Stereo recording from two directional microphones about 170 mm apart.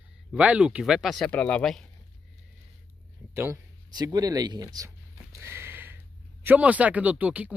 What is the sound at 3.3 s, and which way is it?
Speech, 15° right (ahead or behind).